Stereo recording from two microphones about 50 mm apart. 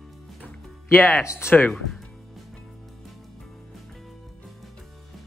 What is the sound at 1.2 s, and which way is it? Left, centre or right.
Speech, left.